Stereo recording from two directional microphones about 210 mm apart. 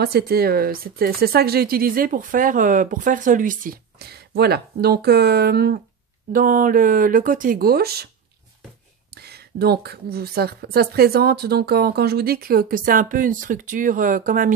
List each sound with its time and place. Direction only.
0.0 s speech: 50° right (ahead or behind)
9.1 s speech: 50° right (ahead or behind)